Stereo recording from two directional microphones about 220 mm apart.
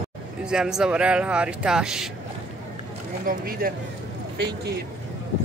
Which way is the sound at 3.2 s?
40° right (ahead or behind).